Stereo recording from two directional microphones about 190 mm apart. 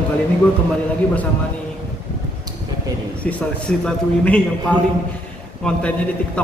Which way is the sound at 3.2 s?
5° left (ahead or behind).